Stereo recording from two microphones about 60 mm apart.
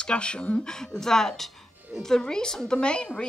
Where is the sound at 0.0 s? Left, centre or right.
Centre.